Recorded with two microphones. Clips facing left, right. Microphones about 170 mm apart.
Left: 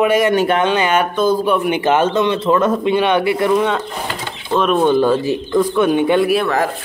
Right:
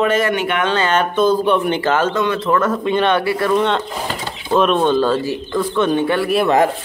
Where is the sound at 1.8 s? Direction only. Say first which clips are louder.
Left 2 dB; 20° left (ahead or behind).